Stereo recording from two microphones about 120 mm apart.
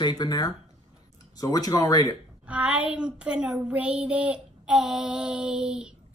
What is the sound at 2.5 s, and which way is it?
Child singing, 10° right (ahead or behind).